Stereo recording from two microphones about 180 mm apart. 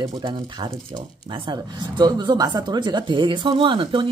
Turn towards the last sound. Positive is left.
turn(degrees=-30)  # may be behind; listen again after turning